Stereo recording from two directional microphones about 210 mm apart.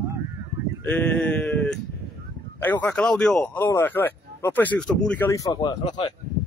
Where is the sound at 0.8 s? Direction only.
10° left (ahead or behind).